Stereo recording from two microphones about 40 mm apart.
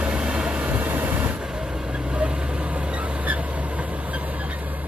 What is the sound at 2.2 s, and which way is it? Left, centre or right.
Vehicle, right.